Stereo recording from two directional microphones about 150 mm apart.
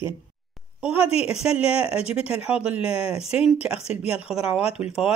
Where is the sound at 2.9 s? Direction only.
40° left (ahead or behind).